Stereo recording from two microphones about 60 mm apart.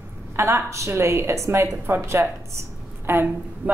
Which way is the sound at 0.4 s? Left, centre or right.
Right.